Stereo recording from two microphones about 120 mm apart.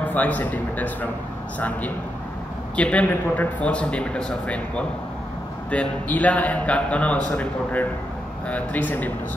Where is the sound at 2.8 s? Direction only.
10° left (ahead or behind).